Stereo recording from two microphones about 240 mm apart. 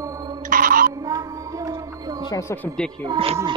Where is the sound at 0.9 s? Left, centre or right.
Centre.